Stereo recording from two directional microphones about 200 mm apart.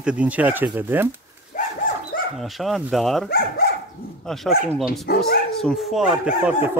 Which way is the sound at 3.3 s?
50° left (ahead or behind).